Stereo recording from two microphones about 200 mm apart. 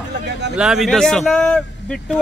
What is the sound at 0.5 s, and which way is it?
A man's voice, 5° right (ahead or behind).